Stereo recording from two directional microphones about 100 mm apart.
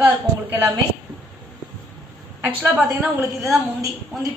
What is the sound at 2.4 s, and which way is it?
Speech, 20° right (ahead or behind).